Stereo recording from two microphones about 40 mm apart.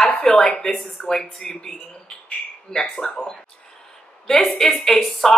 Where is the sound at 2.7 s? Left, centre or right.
Centre.